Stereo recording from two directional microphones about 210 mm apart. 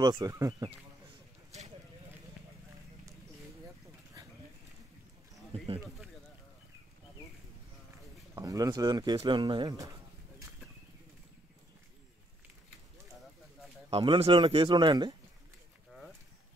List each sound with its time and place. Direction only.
0.0 s speech: 20° right (ahead or behind)
8.4 s speech: 15° right (ahead or behind)
13.8 s speech: 25° right (ahead or behind)